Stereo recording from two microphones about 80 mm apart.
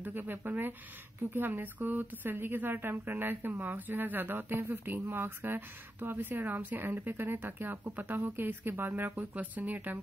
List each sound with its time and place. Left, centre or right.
0.0 s speech: right